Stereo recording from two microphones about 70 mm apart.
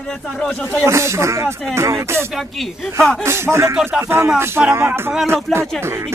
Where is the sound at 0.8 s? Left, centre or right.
Right.